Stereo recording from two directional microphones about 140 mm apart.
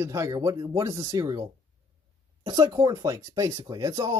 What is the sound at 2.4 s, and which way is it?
Speech, 35° right (ahead or behind).